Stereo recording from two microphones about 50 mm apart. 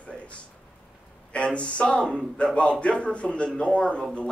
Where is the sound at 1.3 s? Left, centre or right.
Left.